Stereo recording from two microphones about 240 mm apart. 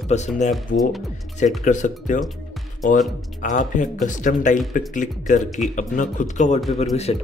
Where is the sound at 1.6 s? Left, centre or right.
Left.